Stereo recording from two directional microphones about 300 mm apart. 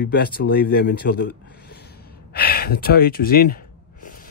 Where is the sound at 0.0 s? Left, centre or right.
Left.